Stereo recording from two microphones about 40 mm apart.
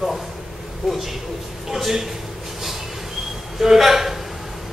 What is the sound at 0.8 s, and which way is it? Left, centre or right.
A man's voice, centre.